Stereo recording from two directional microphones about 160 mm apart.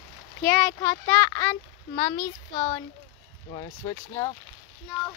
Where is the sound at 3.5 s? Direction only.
25° left (ahead or behind).